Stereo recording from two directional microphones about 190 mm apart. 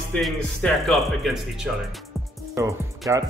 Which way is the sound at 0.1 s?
5° left (ahead or behind).